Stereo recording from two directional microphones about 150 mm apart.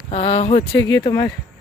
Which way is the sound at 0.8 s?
25° left (ahead or behind).